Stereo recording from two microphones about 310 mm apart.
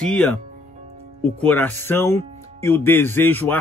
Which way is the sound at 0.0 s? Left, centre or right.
Centre.